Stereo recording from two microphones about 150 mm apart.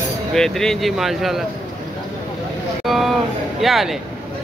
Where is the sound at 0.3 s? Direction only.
5° left (ahead or behind).